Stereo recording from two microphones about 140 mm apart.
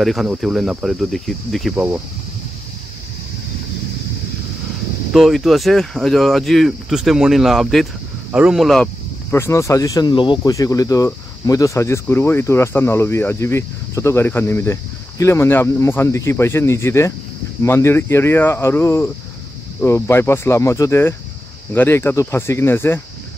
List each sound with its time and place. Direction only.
0.0 s speech: centre (ahead or behind)
5.1 s speech: centre (ahead or behind)
9.3 s speech: 20° left (ahead or behind); by 10.5 s 35° left (ahead or behind)
10.5 s speech: 25° left (ahead or behind)